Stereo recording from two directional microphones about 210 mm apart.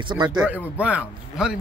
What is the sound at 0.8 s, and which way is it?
Speech, 5° right (ahead or behind).